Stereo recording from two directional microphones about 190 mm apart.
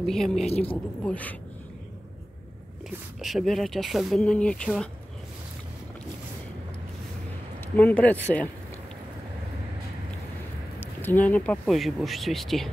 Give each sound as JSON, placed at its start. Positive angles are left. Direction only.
{"t": 0.0, "sound": "speech", "side_deg": 0}
{"t": 0.5, "sound": "speech", "side_deg": 35}
{"t": 1.0, "sound": "speech", "side_deg": 5}
{"t": 3.2, "sound": "speech", "side_deg": 0}
{"t": 7.7, "sound": "speech", "side_deg": 10}
{"t": 10.8, "sound": "speech", "side_deg": 10}